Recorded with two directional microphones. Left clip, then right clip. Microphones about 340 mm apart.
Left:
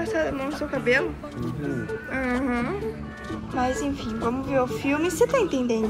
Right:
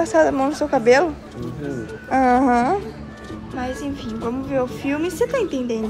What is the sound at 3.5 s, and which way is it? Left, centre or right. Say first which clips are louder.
A woman's voice: left 2 dB; centre.